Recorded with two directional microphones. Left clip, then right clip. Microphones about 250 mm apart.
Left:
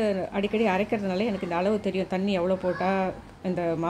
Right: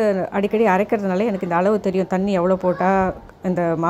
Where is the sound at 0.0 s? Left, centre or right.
Centre.